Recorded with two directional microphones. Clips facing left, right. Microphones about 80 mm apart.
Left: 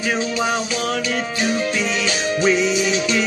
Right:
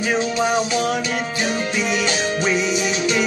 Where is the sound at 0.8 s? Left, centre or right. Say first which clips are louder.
Even; centre.